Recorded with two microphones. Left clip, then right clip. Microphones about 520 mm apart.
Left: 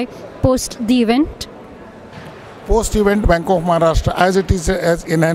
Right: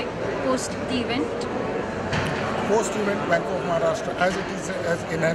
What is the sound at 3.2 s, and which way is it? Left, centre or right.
Speech, left.